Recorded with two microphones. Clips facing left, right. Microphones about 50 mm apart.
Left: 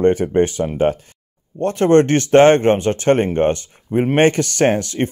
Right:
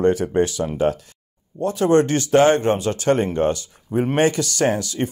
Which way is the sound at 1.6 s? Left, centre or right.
Left.